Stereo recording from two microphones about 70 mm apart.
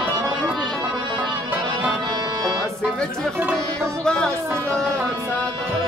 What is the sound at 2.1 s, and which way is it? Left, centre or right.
Music, right.